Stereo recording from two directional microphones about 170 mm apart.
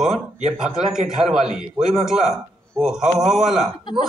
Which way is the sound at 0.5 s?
5° right (ahead or behind).